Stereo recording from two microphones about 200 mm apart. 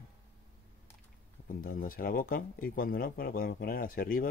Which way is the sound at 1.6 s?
45° left (ahead or behind).